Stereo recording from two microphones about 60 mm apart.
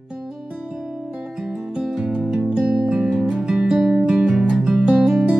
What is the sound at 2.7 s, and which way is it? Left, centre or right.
Music, centre.